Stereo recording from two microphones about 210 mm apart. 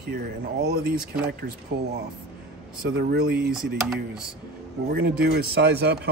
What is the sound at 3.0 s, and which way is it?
Speech, 45° right (ahead or behind).